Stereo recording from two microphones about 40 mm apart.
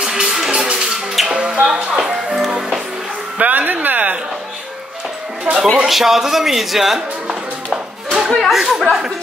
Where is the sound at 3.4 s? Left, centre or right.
Right.